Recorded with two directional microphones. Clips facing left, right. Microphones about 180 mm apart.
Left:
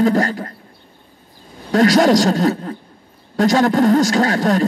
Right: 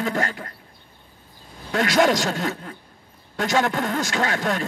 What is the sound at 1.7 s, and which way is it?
A man's voice, 35° left (ahead or behind).